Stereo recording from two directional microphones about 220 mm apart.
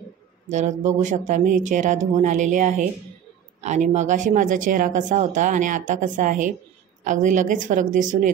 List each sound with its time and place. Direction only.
0.5 s speech: 30° right (ahead or behind)